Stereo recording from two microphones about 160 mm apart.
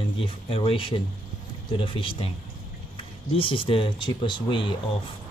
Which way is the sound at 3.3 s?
35° left (ahead or behind).